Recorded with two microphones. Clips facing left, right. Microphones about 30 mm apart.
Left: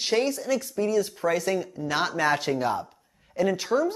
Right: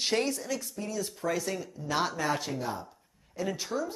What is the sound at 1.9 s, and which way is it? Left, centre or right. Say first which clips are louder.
Speech: left 5 dB; left.